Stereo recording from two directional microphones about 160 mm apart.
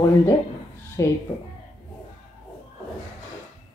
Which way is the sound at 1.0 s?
20° left (ahead or behind).